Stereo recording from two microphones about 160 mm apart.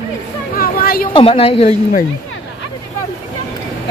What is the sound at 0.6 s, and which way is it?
Chatter, 65° left (ahead or behind).